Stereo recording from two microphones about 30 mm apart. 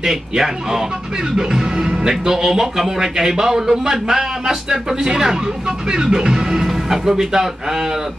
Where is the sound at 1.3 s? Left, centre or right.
Centre.